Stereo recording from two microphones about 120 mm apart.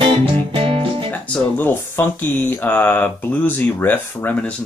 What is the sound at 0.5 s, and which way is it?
Music, 50° right (ahead or behind).